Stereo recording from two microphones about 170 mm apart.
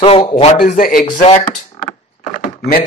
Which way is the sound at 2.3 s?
60° left (ahead or behind).